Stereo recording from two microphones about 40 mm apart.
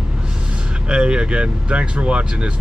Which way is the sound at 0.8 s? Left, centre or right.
Right.